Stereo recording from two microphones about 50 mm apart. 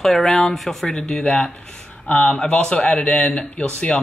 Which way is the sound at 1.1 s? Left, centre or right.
Left.